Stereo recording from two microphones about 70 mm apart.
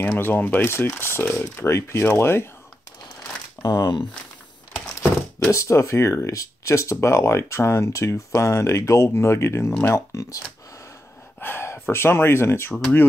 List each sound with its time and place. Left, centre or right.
0.0 s speech: left
3.6 s speech: left
5.5 s speech: left
9.9 s speech: left
11.3 s gasp: left
11.9 s speech: left